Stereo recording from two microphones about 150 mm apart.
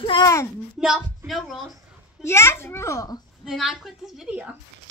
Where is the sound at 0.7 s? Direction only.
Centre (ahead or behind).